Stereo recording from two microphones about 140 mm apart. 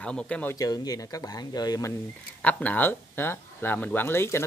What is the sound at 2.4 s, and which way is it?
Speech, 10° left (ahead or behind).